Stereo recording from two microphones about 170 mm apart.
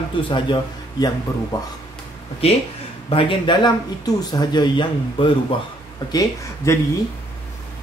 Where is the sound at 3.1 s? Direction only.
30° left (ahead or behind).